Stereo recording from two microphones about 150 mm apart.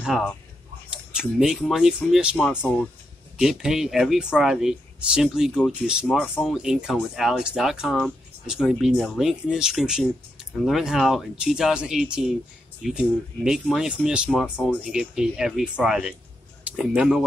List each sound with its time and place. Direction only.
1.1 s speech: 5° right (ahead or behind)
3.3 s speech: 5° right (ahead or behind)